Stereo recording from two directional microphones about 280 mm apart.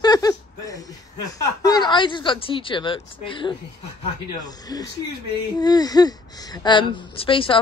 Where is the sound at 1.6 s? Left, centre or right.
Centre.